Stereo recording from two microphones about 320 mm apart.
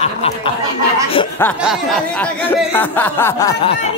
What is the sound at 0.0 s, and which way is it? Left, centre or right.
Snicker, centre.